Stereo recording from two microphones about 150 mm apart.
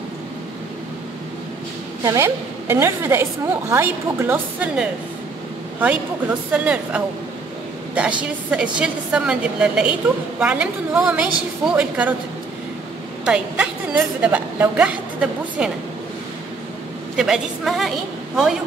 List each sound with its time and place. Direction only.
2.0 s a woman's voice: 15° right (ahead or behind)
6.5 s a woman's voice: 10° right (ahead or behind)
13.2 s a woman's voice: 5° right (ahead or behind)
17.2 s a woman's voice: centre (ahead or behind)